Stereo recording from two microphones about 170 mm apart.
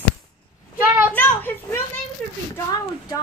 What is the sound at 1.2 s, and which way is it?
Speech, 10° left (ahead or behind).